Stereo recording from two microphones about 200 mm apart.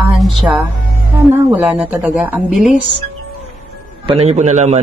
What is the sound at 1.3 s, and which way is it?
A woman's voice, 10° right (ahead or behind).